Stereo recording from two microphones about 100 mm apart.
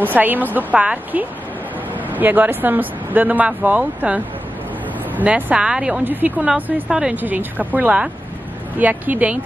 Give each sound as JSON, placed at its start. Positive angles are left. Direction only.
{"t": 0.0, "sound": "speech", "side_deg": -20}